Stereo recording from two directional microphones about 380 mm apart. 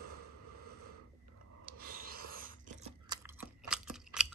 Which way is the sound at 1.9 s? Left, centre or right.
Right.